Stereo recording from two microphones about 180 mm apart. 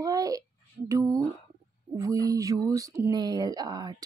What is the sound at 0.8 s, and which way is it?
Speech, 20° right (ahead or behind).